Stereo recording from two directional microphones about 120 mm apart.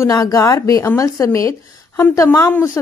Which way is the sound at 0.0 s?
30° left (ahead or behind).